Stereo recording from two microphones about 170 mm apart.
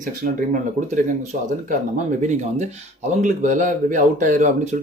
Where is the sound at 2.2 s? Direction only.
45° right (ahead or behind).